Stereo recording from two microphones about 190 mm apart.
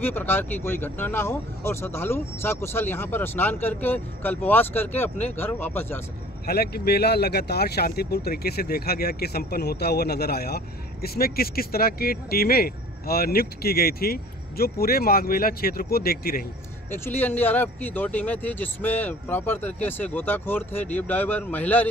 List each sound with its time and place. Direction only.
0.0 s speech: 10° left (ahead or behind)
6.4 s speech: 55° left (ahead or behind)
16.9 s speech: 10° left (ahead or behind)